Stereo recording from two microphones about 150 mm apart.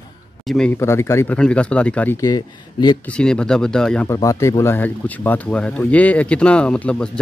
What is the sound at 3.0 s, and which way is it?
Speech, 5° left (ahead or behind).